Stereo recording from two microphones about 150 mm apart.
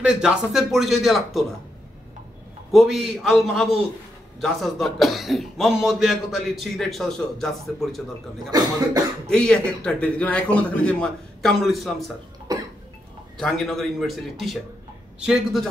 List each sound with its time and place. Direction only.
0.0 s speech: 5° right (ahead or behind)
2.7 s speech: centre (ahead or behind)
8.5 s cough: 25° right (ahead or behind)
9.3 s a man's voice: 5° left (ahead or behind)
12.5 s cough: 25° right (ahead or behind)
13.4 s speech: centre (ahead or behind)